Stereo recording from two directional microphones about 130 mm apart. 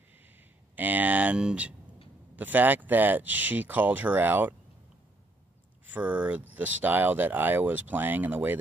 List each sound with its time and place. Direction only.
0.7 s speech: 15° right (ahead or behind)
5.9 s speech: 10° right (ahead or behind)